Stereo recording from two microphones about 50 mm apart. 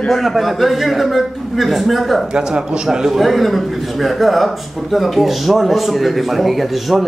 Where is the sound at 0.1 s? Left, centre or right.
Centre.